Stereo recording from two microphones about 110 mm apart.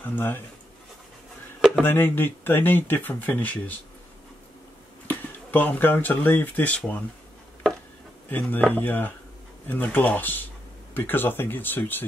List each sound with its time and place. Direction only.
0.0 s speech: 20° left (ahead or behind)
1.8 s speech: 20° left (ahead or behind)
5.0 s speech: 15° left (ahead or behind)
8.3 s speech: 15° left (ahead or behind)